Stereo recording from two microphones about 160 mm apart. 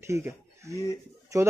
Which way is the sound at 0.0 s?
15° right (ahead or behind).